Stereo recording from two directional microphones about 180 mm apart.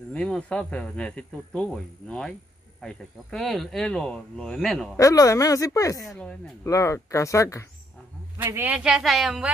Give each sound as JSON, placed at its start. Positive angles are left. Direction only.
{"t": 0.1, "sound": "speech", "side_deg": 5}
{"t": 4.9, "sound": "speech", "side_deg": 20}
{"t": 6.0, "sound": "speech", "side_deg": 5}
{"t": 6.7, "sound": "speech", "side_deg": 15}
{"t": 8.4, "sound": "speech", "side_deg": -10}